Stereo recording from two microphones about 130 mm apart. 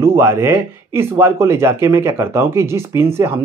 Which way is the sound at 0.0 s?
20° right (ahead or behind).